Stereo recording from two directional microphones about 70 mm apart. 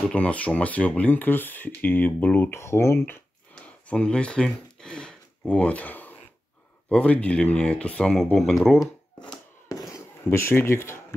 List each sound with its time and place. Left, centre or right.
0.1 s speech: centre; by 3.2 s left
3.9 s speech: centre
8.4 s speech: centre
9.3 s fireworks: left
10.2 s speech: left